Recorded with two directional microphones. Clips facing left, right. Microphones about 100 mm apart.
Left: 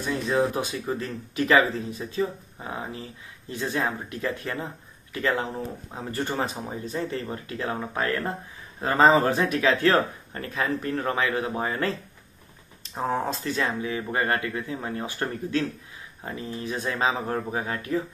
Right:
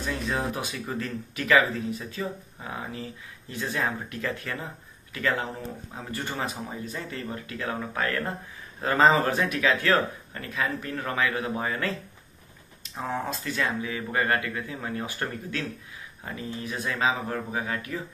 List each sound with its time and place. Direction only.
0.3 s speech: 30° left (ahead or behind)